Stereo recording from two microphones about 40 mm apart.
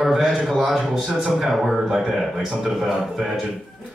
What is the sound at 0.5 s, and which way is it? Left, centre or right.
A man's voice, centre.